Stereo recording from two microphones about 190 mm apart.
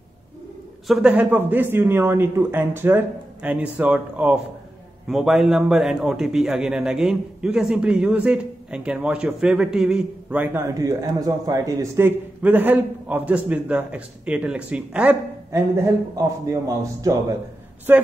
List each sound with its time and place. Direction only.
0.8 s a man's voice: 5° right (ahead or behind)